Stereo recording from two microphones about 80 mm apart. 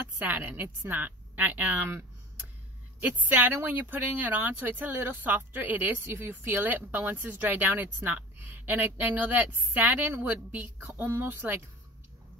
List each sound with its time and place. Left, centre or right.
0.2 s speech: right